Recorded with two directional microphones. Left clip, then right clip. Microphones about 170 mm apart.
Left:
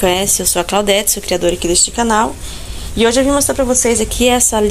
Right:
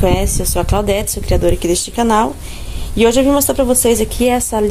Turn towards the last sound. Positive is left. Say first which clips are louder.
# left 2 dB
turn(degrees=-5)  # may be behind; listen again after turning